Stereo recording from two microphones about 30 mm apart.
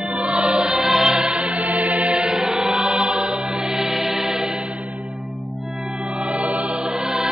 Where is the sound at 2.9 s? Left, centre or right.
Right.